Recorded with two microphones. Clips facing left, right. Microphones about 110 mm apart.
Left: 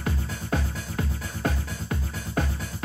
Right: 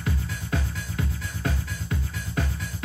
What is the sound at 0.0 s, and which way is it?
Music, 40° left (ahead or behind).